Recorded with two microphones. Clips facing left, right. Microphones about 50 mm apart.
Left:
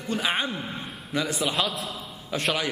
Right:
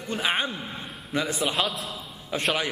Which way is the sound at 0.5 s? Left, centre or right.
Centre.